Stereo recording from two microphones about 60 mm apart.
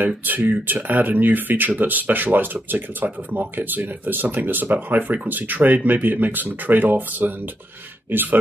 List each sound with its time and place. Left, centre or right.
0.2 s speech: right